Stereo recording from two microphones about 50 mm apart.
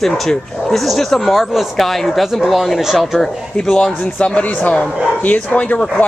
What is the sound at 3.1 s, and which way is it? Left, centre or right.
Speech, centre.